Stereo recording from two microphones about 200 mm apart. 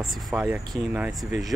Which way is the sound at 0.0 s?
Centre (ahead or behind).